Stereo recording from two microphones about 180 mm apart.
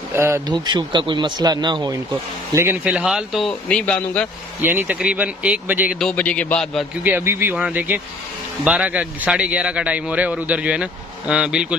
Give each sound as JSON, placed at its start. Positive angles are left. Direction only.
{"t": 0.1, "sound": "speech", "side_deg": -15}
{"t": 2.5, "sound": "a man's voice", "side_deg": -10}
{"t": 4.6, "sound": "a man's voice", "side_deg": -10}
{"t": 6.0, "sound": "a man's voice", "side_deg": 5}
{"t": 7.0, "sound": "a man's voice", "side_deg": -10}